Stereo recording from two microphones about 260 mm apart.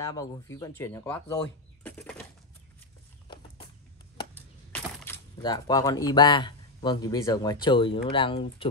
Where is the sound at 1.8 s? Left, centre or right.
Centre.